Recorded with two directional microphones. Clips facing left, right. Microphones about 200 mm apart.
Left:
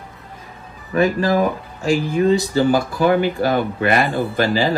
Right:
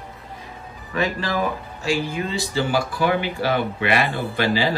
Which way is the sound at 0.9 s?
40° left (ahead or behind).